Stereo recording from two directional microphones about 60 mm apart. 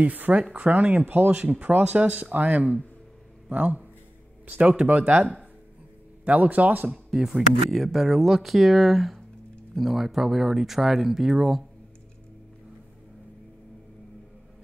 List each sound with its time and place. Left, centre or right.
0.0 s speech: right
7.1 s speech: centre